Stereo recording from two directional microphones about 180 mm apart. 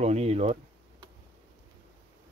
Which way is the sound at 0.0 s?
35° right (ahead or behind).